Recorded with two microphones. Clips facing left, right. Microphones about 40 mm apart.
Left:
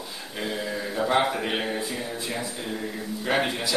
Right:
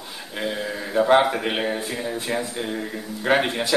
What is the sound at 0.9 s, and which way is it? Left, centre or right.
Speech, right.